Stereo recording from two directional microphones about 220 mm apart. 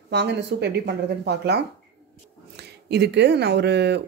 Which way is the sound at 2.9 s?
50° right (ahead or behind).